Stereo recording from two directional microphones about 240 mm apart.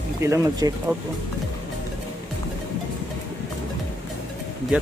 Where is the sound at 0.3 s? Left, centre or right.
Centre.